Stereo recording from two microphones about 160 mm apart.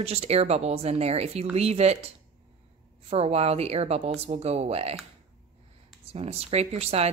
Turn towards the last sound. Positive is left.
turn(degrees=-40)  # may be behind; listen again after turning